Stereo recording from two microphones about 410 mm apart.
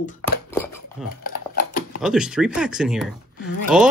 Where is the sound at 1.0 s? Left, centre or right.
Left.